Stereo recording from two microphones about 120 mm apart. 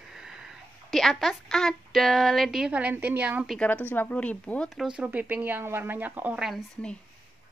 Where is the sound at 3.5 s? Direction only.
10° left (ahead or behind).